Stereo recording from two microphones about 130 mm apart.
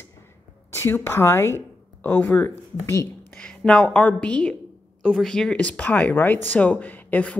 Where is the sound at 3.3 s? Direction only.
5° left (ahead or behind).